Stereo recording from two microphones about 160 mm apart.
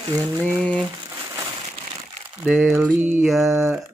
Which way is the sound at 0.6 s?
5° left (ahead or behind).